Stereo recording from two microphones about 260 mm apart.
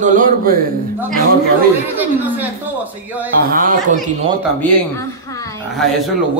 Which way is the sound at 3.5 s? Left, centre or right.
Right.